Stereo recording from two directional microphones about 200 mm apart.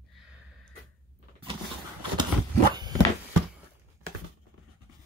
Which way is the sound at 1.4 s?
25° right (ahead or behind).